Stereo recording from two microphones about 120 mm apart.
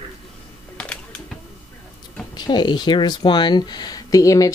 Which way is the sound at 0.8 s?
10° left (ahead or behind).